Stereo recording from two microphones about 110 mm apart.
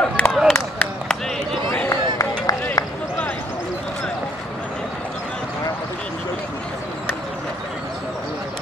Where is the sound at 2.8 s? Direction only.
30° left (ahead or behind).